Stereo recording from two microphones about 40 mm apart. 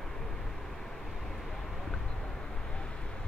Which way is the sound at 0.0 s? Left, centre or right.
Centre.